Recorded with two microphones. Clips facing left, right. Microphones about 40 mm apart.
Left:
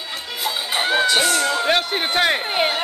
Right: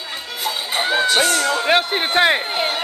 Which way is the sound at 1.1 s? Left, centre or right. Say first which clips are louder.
Right 1 dB; centre.